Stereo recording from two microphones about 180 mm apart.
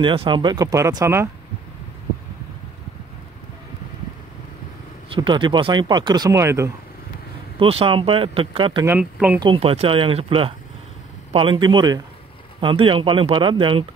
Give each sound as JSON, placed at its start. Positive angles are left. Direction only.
{"t": 0.0, "sound": "speech", "side_deg": -30}
{"t": 5.1, "sound": "speech", "side_deg": -25}
{"t": 7.5, "sound": "speech", "side_deg": -30}
{"t": 8.8, "sound": "speech", "side_deg": -10}
{"t": 9.4, "sound": "speech", "side_deg": -30}